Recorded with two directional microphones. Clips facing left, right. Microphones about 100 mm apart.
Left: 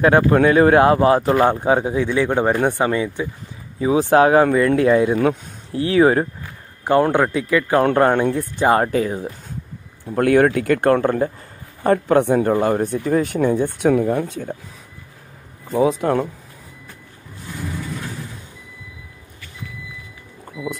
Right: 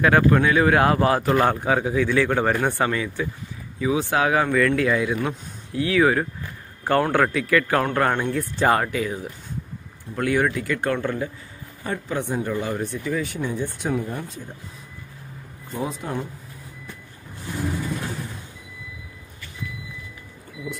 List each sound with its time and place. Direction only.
0.0 s a man's voice: 30° left (ahead or behind)
3.8 s speech: 35° left (ahead or behind)
6.8 s a man's voice: 20° left (ahead or behind)
8.7 s speech: 35° left (ahead or behind)
10.1 s speech: 55° left (ahead or behind)
11.8 s speech: 55° left (ahead or behind)
15.7 s speech: 90° left